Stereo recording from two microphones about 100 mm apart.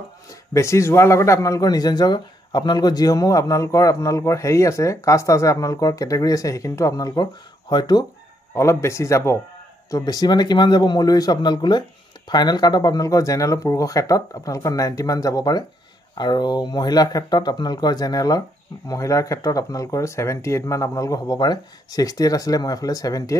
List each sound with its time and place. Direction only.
0.5 s a man's voice: 30° left (ahead or behind)
8.5 s a man's voice: 30° left (ahead or behind)